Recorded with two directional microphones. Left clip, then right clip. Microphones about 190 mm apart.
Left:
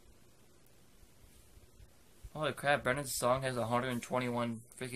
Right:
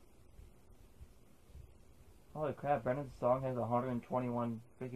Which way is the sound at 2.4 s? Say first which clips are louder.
Left 3 dB; 15° left (ahead or behind).